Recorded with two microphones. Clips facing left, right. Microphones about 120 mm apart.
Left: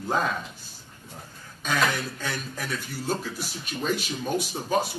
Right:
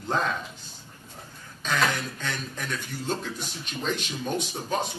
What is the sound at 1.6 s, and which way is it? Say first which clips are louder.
Speech: left 1 dB; 5° left (ahead or behind).